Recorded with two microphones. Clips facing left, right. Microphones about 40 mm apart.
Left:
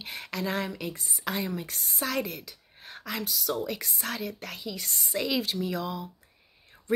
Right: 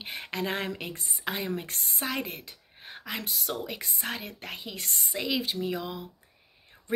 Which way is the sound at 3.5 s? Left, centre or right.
Centre.